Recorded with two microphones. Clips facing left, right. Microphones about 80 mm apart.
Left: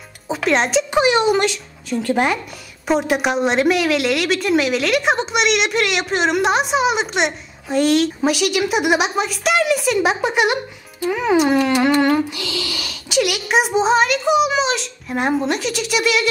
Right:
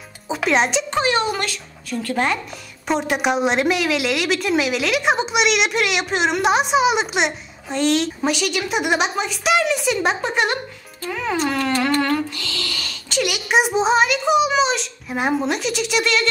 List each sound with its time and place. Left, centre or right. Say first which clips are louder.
0.3 s speech: left 1 dB; centre
0.9 s a child's voice: left 6 dB; centre
2.9 s a woman's voice: left 2 dB; centre
11.1 s a woman's voice: left 6 dB; centre